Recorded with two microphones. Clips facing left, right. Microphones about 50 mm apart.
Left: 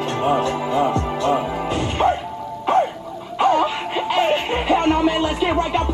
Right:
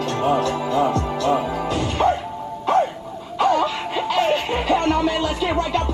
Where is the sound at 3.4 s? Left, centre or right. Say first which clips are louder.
Left 1 dB; centre.